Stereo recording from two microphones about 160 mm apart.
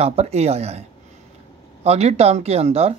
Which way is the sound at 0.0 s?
40° right (ahead or behind).